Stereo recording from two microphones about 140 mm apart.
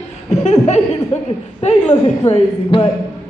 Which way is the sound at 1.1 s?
50° left (ahead or behind).